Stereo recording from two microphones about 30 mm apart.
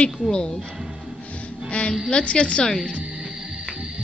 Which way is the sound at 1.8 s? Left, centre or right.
Left.